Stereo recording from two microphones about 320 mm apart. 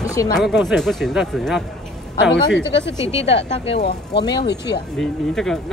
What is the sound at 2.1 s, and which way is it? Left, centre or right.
Speech, left.